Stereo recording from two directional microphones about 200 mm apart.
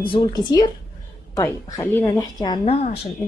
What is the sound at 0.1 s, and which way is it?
A woman's voice, 20° left (ahead or behind).